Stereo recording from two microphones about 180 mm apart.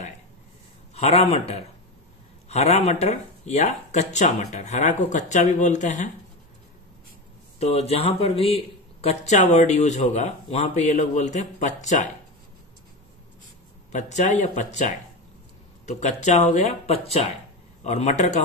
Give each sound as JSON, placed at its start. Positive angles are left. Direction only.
{"t": 0.9, "sound": "speech", "side_deg": 35}
{"t": 2.4, "sound": "speech", "side_deg": 35}
{"t": 7.5, "sound": "speech", "side_deg": 35}
{"t": 13.9, "sound": "speech", "side_deg": 40}